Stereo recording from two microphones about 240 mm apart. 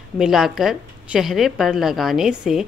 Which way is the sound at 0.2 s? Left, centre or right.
Centre.